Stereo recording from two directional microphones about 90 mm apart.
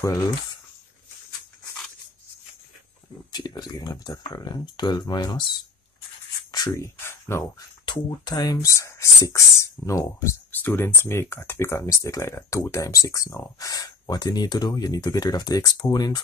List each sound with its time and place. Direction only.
3.3 s speech: 50° left (ahead or behind)
6.7 s speech: 30° left (ahead or behind)
7.8 s speech: 55° left (ahead or behind); by 10.3 s 35° left (ahead or behind)
10.5 s speech: 20° left (ahead or behind); by 16.1 s 50° left (ahead or behind)